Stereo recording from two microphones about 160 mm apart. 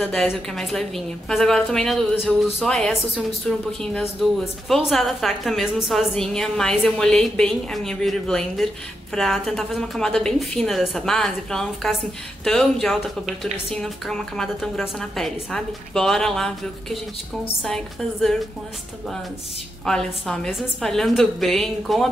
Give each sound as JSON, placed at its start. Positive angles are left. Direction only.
{"t": 0.0, "sound": "a woman's voice", "side_deg": 0}
{"t": 19.8, "sound": "a woman's voice", "side_deg": 5}